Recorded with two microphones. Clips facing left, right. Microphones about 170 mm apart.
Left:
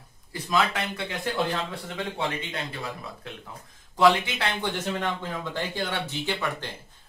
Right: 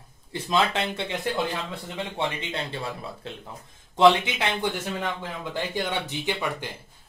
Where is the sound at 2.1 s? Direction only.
25° right (ahead or behind).